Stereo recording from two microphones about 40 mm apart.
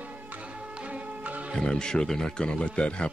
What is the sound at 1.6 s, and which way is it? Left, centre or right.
Speech, left.